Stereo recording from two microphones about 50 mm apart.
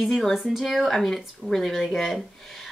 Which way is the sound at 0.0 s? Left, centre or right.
Centre.